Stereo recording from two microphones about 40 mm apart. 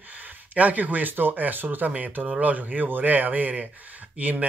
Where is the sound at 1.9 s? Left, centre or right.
Right.